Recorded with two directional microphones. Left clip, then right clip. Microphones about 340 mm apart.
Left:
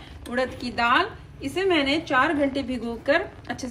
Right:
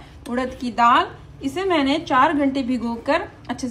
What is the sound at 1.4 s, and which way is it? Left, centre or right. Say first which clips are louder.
A woman's voice: right 2 dB; centre.